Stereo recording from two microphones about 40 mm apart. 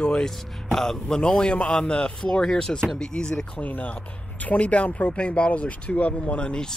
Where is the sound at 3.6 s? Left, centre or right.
Left.